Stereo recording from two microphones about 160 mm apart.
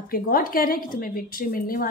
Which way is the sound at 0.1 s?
65° left (ahead or behind).